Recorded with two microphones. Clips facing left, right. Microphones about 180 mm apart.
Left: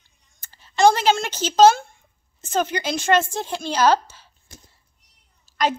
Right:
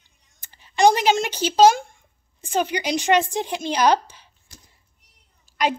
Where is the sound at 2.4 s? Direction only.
15° right (ahead or behind).